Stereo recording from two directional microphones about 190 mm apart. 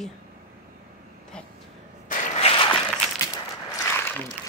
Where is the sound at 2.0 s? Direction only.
30° left (ahead or behind).